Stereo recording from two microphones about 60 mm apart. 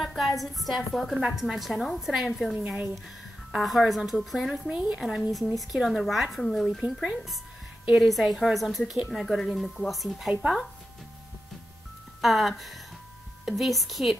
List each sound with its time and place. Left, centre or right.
0.0 s a woman's voice: centre
4.6 s speech: centre
5.3 s a woman's voice: centre
6.8 s speech: centre
7.9 s a woman's voice: centre
12.2 s a woman's voice: centre